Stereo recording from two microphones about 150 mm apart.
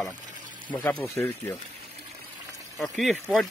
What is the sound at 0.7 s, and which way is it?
Speech, 10° left (ahead or behind).